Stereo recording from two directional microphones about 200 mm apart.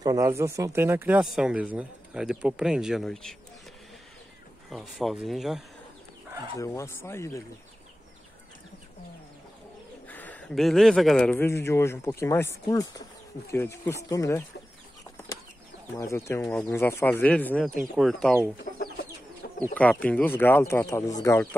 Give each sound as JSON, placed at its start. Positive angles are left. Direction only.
{"t": 0.0, "sound": "speech", "side_deg": -15}
{"t": 4.6, "sound": "speech", "side_deg": 0}
{"t": 6.6, "sound": "speech", "side_deg": 15}
{"t": 10.0, "sound": "speech", "side_deg": 10}
{"t": 13.5, "sound": "speech", "side_deg": 10}
{"t": 16.0, "sound": "speech", "side_deg": 15}
{"t": 18.6, "sound": "chicken", "side_deg": 50}
{"t": 19.7, "sound": "speech", "side_deg": 5}